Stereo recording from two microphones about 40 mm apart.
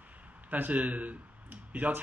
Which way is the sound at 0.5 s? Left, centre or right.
Right.